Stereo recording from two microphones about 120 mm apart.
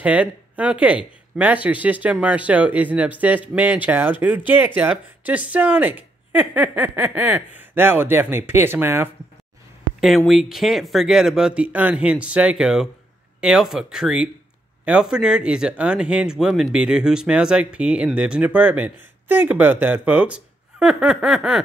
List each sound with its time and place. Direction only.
0.0 s speech: 10° right (ahead or behind)
9.9 s speech: centre (ahead or behind)